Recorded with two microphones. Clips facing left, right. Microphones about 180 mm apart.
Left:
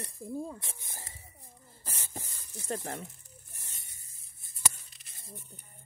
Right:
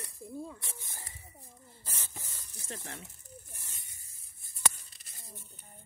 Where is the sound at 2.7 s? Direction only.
45° left (ahead or behind).